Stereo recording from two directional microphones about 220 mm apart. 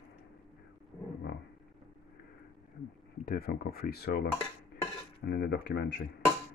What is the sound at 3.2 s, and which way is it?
Speech, 45° left (ahead or behind).